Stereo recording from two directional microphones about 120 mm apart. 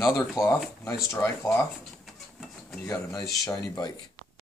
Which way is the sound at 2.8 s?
30° left (ahead or behind).